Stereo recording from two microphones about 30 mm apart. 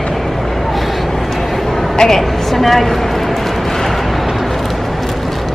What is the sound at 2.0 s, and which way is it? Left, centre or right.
Speech, centre.